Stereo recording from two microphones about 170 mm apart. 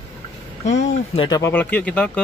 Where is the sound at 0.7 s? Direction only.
45° left (ahead or behind).